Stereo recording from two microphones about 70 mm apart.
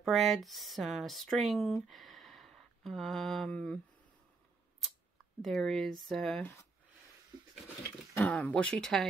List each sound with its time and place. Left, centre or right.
0.0 s speech: centre
1.9 s a sound: centre
3.5 s speech: centre
5.4 s speech: centre
8.3 s speech: centre